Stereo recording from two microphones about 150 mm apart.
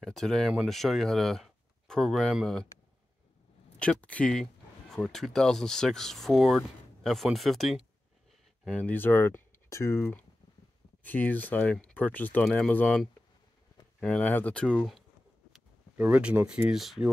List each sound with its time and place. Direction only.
0.0 s speech: 5° left (ahead or behind)
3.8 s speech: 10° left (ahead or behind)
16.0 s speech: 10° right (ahead or behind)